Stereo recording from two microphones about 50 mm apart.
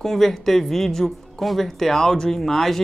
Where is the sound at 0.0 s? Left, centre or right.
Centre.